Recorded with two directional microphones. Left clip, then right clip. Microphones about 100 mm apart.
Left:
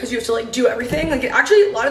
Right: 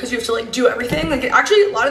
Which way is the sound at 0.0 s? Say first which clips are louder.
Even; 15° right (ahead or behind).